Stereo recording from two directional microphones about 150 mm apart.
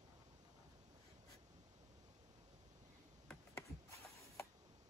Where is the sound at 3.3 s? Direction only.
15° left (ahead or behind).